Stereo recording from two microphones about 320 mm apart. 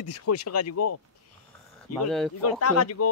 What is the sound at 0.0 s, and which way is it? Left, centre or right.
Speech, left.